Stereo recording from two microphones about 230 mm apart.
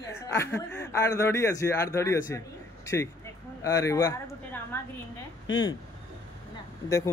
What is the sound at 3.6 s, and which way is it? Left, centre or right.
Speech, centre.